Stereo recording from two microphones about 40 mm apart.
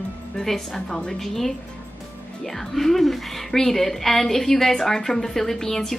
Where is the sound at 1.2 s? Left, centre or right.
Centre.